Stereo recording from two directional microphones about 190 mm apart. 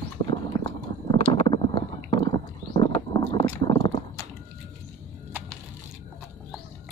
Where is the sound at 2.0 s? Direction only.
25° left (ahead or behind).